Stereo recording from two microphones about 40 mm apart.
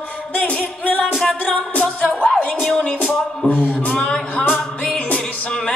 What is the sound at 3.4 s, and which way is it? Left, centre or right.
Music, left.